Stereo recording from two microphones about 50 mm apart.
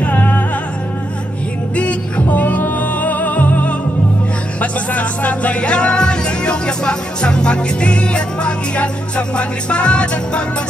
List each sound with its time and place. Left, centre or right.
0.0 s music: left
1.8 s music: left